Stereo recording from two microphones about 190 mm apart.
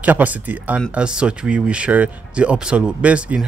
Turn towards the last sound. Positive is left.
turn(degrees=-5)  # may be behind; listen again after turning